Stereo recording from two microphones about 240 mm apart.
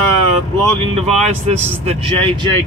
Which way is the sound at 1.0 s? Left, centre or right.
Right.